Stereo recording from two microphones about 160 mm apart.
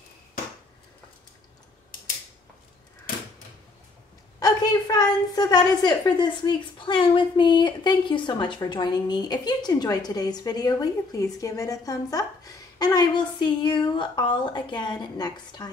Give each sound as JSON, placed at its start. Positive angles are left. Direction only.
{"t": 4.4, "sound": "a woman's voice", "side_deg": 25}